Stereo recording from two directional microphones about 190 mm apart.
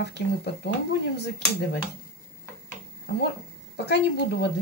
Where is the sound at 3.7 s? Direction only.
60° left (ahead or behind).